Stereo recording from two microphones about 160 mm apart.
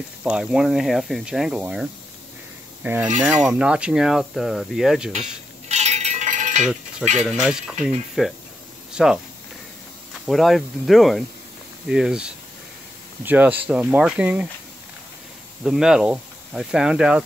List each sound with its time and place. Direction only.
0.2 s speech: 5° right (ahead or behind)
2.8 s filing: 10° right (ahead or behind)
3.4 s speech: 5° right (ahead or behind)
5.7 s a sound: 45° right (ahead or behind)
7.0 s speech: centre (ahead or behind)
10.2 s speech: centre (ahead or behind)
15.6 s speech: 5° right (ahead or behind)